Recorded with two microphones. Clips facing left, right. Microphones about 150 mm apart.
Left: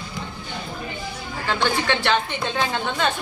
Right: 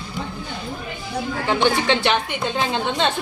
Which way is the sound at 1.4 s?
20° right (ahead or behind).